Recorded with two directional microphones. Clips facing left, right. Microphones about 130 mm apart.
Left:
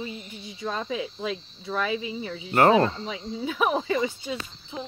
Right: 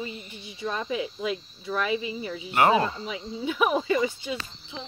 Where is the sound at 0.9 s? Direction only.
30° left (ahead or behind).